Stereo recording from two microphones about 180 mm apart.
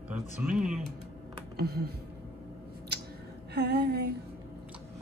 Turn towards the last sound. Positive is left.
turn(degrees=-65)  # may be behind; listen again after turning